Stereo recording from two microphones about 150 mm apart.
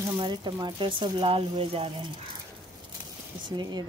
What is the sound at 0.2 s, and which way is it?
Speech, 30° right (ahead or behind).